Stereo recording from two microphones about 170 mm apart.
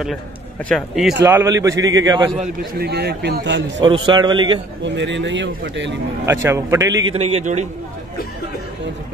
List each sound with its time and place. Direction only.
0.7 s speech: centre (ahead or behind)
1.2 s a man's voice: 20° right (ahead or behind)
2.8 s a man's voice: 70° right (ahead or behind); by 3.6 s 90° right
3.8 s a man's voice: 30° right (ahead or behind)
4.8 s speech: 90° right
6.2 s speech: 15° right (ahead or behind)
7.1 s a man's voice: 40° right (ahead or behind)